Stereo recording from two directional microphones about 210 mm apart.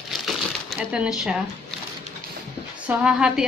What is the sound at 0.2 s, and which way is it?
Crushing, centre (ahead or behind).